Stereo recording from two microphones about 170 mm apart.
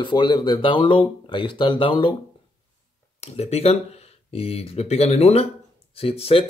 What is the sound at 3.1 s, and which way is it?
Speech, 40° left (ahead or behind).